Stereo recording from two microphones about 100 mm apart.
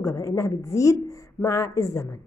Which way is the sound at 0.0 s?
30° left (ahead or behind).